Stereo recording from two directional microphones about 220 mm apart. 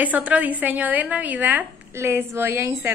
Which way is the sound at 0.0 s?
5° right (ahead or behind).